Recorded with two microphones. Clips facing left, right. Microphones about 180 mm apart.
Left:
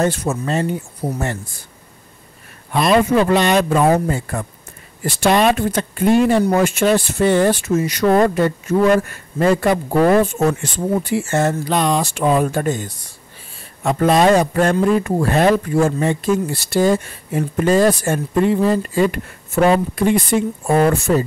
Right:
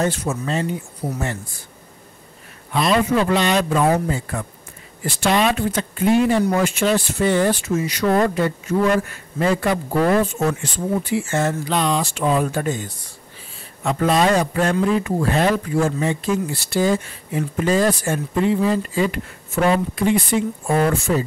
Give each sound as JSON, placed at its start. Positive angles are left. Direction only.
{"t": 0.0, "sound": "speech", "side_deg": 45}
{"t": 2.7, "sound": "speech", "side_deg": 50}